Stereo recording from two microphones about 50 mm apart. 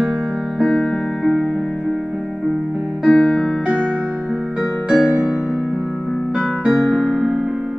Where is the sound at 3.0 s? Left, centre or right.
Centre.